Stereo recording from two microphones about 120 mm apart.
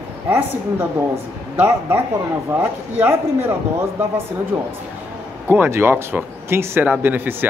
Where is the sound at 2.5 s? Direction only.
20° right (ahead or behind).